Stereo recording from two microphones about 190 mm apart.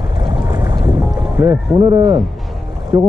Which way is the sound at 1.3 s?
15° right (ahead or behind).